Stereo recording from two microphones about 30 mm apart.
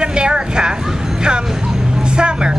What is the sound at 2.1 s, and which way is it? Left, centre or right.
Vehicle, right.